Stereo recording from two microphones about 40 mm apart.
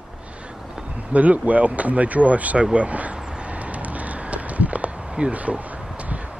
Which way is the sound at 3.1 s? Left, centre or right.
Right.